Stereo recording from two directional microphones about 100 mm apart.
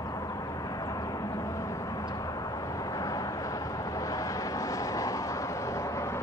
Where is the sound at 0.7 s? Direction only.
40° left (ahead or behind).